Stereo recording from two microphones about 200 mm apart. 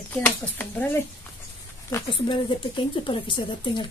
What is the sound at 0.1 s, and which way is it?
Speech, 10° left (ahead or behind).